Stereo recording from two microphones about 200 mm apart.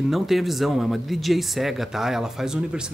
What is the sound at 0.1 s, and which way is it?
Speech, centre (ahead or behind).